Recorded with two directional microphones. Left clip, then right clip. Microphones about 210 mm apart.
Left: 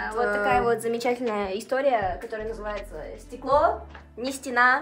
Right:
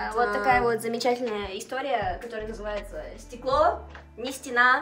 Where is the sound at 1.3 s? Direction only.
45° left (ahead or behind).